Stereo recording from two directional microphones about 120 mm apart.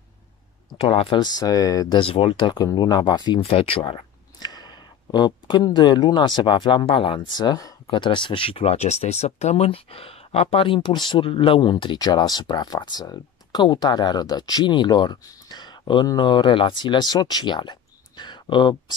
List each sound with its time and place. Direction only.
0.8 s speech: 50° left (ahead or behind); by 2.0 s 30° left (ahead or behind)
2.0 s speech: 50° left (ahead or behind)
4.4 s speech: 35° left (ahead or behind)